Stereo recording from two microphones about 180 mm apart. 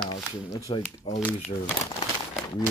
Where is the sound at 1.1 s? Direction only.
30° left (ahead or behind).